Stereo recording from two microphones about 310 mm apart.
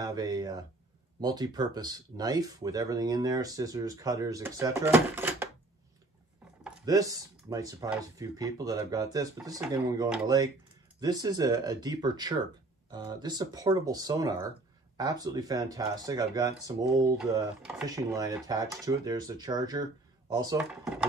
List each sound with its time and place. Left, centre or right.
0.0 s speech: centre
6.6 s speech: centre